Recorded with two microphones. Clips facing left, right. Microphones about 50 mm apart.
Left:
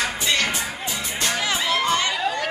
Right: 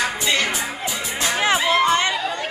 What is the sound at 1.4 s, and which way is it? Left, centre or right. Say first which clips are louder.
Music: right 7 dB; right.